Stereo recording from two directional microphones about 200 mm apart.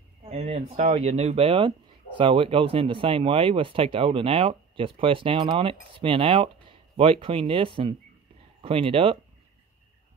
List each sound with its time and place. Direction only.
0.2 s speech: 30° right (ahead or behind)